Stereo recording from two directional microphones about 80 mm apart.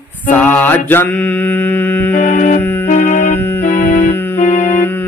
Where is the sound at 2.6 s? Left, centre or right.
Left.